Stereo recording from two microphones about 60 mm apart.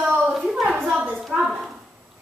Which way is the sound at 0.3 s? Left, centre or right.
Centre.